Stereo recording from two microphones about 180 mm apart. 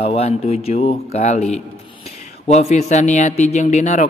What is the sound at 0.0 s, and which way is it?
A man's voice, 35° left (ahead or behind).